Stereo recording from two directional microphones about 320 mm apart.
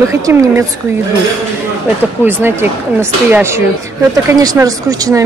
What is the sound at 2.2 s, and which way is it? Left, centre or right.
Speech, centre.